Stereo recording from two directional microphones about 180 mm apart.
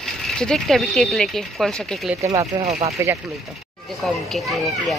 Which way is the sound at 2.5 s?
25° right (ahead or behind).